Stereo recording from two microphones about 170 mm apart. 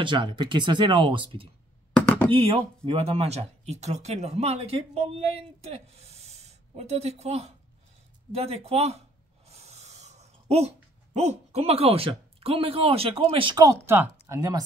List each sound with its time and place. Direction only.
0.0 s speech: 30° right (ahead or behind)
2.0 s knock: 10° left (ahead or behind)
2.3 s speech: 35° right (ahead or behind)
9.5 s a sound: 40° right (ahead or behind)
11.1 s speech: 40° right (ahead or behind)
13.8 s speech: 15° right (ahead or behind)